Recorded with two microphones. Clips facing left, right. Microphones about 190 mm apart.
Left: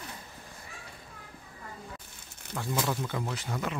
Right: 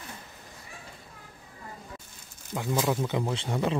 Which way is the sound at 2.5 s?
15° right (ahead or behind).